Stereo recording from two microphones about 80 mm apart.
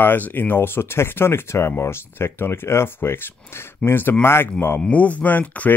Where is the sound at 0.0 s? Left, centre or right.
Left.